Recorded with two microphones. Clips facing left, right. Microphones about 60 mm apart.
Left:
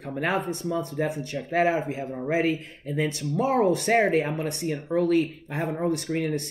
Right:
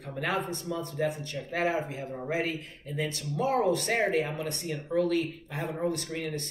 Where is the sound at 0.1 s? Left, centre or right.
Left.